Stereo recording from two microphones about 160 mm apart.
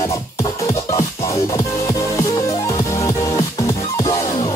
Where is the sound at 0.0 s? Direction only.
20° left (ahead or behind).